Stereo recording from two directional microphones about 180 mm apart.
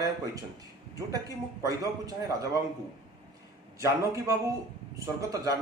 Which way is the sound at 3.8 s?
15° right (ahead or behind).